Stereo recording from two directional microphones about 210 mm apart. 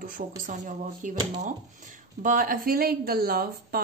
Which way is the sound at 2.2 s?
40° right (ahead or behind).